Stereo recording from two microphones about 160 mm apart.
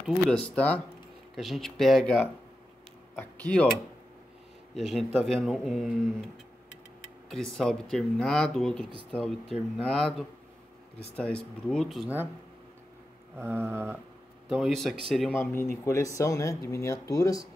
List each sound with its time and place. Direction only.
0.0 s speech: 5° left (ahead or behind)
4.7 s speech: centre (ahead or behind)
7.2 s speech: 5° left (ahead or behind)
13.4 s a sound: 15° right (ahead or behind)
14.5 s speech: centre (ahead or behind)
15.3 s speech: 15° left (ahead or behind)